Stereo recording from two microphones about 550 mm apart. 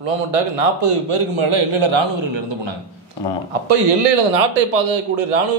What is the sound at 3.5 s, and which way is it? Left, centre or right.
A man's voice, right.